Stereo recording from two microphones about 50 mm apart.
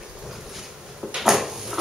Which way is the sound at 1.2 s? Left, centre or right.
Centre.